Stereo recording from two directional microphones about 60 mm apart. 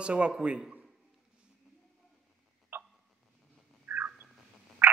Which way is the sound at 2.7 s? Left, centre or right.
Right.